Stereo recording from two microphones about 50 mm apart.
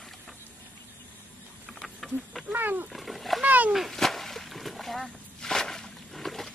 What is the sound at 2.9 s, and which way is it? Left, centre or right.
Cat, centre.